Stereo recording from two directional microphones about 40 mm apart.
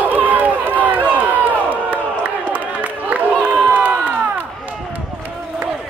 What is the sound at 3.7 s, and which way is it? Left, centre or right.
Crowd, right.